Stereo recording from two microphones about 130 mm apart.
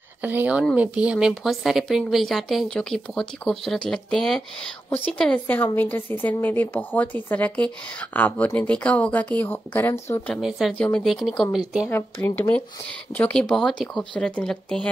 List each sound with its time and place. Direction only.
0.2 s a woman's voice: 15° right (ahead or behind); by 10.3 s 15° left (ahead or behind)
10.3 s a woman's voice: centre (ahead or behind)
10.7 s a woman's voice: 10° left (ahead or behind); by 11.9 s 5° right (ahead or behind)
11.9 s a woman's voice: 15° left (ahead or behind)